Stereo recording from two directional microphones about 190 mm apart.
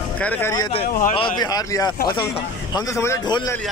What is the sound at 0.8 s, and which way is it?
Speech, 45° left (ahead or behind).